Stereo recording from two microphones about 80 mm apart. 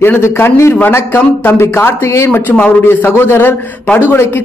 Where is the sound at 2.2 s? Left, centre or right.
Centre.